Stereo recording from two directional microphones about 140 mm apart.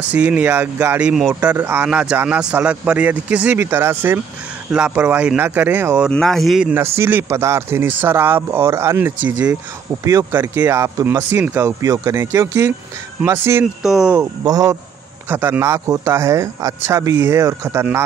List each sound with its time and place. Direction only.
0.1 s speech: 10° right (ahead or behind)
6.0 s speech: centre (ahead or behind)
7.0 s speech: 15° right (ahead or behind)
10.0 s speech: 25° right (ahead or behind)
13.8 s speech: centre (ahead or behind)
14.4 s speech: 25° right (ahead or behind)